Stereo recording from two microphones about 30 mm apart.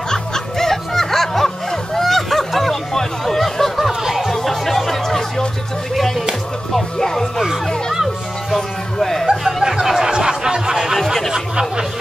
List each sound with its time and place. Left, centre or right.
0.1 s music: centre
2.7 s a sound: centre
4.3 s chatter: centre
7.0 s music: centre
8.5 s music: centre
9.5 s music: centre
10.2 s a sound: right
11.3 s chatter: right